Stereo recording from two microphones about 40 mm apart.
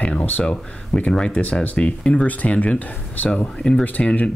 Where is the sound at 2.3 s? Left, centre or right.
Left.